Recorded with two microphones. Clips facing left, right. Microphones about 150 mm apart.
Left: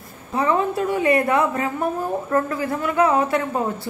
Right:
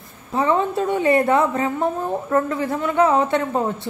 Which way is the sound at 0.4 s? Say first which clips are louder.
Right 1 dB; 25° right (ahead or behind).